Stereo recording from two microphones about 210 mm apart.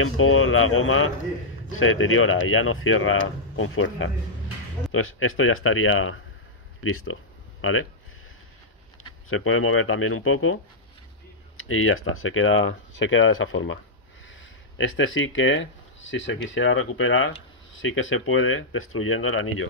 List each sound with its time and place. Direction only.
0.0 s speech: 75° left (ahead or behind)
9.3 s speech: 80° left